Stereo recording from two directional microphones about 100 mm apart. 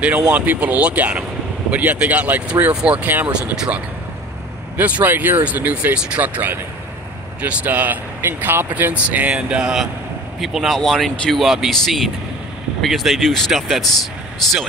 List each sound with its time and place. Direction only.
0.0 s speech: 15° right (ahead or behind)